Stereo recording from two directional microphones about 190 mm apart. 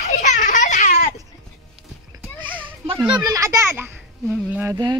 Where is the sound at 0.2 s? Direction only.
40° left (ahead or behind).